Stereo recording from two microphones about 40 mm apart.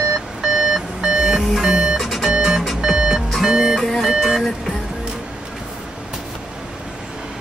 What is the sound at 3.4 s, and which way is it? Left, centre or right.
Music, centre.